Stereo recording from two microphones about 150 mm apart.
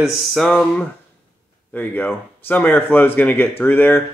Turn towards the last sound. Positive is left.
turn(degrees=15)  # may be behind; listen again after turning